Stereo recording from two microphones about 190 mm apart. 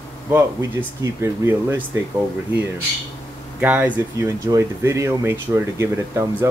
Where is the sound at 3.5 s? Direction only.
10° right (ahead or behind).